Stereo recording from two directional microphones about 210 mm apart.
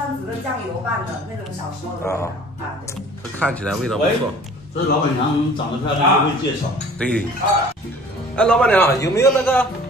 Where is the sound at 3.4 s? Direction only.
5° left (ahead or behind).